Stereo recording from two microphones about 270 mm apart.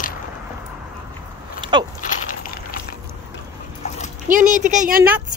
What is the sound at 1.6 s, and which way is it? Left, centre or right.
Biting, centre.